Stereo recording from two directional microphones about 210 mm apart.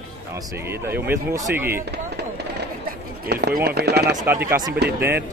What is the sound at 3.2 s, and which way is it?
Speech, 50° right (ahead or behind).